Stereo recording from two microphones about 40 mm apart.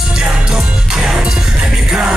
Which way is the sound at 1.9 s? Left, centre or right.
Centre.